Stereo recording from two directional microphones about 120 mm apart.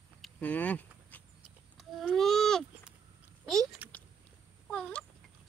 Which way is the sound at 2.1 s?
Centre (ahead or behind).